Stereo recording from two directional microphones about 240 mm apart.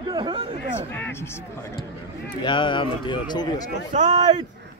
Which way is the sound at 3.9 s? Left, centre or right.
Right.